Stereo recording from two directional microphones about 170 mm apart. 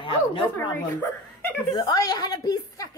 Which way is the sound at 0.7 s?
10° left (ahead or behind).